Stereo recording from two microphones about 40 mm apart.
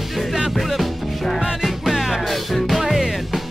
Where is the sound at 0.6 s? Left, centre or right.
Centre.